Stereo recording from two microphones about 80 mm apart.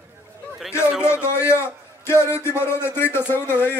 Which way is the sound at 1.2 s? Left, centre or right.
Left.